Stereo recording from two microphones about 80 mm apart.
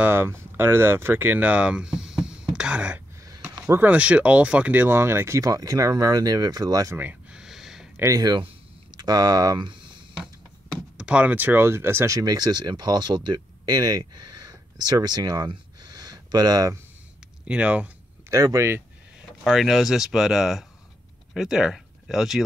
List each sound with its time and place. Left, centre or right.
0.0 s speech: right
5.4 s speech: right
7.0 s a sound: right
7.3 s a sound: centre
8.1 s speech: right
11.0 s speech: centre; by 12.2 s right
12.2 s speech: right
17.5 s speech: centre
18.3 s speech: right
19.4 s speech: centre